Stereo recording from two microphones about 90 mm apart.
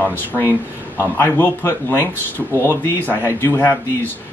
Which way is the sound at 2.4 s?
10° left (ahead or behind).